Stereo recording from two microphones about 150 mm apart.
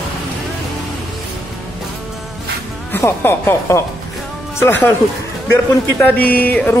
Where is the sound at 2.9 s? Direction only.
15° left (ahead or behind).